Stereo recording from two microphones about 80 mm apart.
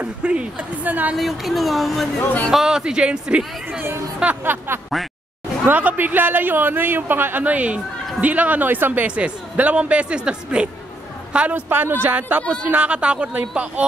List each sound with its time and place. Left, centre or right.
0.0 s a man's voice: centre
1.1 s a man's voice: centre
5.0 s speech: centre
5.7 s a man's voice: right